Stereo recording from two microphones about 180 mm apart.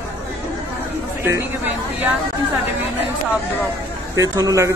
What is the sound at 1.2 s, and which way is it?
Speech, 10° right (ahead or behind).